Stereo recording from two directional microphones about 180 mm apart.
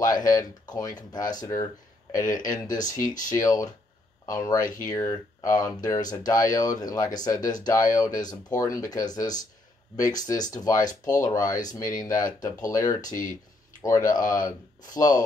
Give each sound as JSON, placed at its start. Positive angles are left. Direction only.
{"t": 0.3, "sound": "speech", "side_deg": 20}
{"t": 2.2, "sound": "speech", "side_deg": 45}
{"t": 2.5, "sound": "speech", "side_deg": 20}
{"t": 13.0, "sound": "speech", "side_deg": 45}
{"t": 13.7, "sound": "speech", "side_deg": 20}